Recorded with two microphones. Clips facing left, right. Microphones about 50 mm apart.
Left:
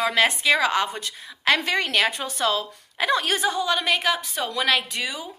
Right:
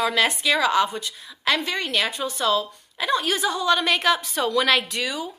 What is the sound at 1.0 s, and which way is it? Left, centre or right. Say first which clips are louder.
A woman's voice: even; left.